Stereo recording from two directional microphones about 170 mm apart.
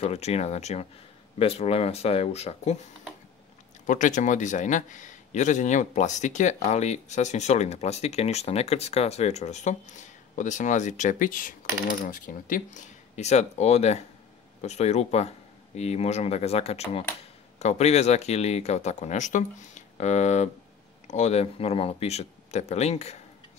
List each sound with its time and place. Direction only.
0.0 s speech: 40° left (ahead or behind)
3.8 s a man's voice: 45° left (ahead or behind)